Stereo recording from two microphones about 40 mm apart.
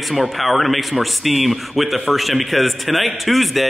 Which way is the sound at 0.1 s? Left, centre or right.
Centre.